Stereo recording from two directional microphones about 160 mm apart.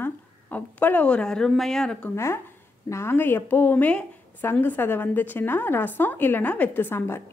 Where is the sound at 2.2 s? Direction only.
15° left (ahead or behind).